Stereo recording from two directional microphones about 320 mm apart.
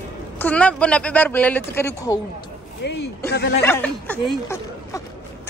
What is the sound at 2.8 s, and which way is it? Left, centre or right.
Speech, left.